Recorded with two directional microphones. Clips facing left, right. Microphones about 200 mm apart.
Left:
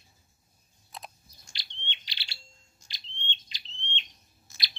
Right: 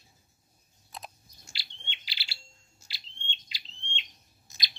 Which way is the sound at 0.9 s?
5° right (ahead or behind).